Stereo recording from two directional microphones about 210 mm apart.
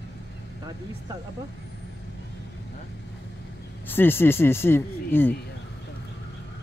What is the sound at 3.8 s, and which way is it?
Speech, 10° left (ahead or behind).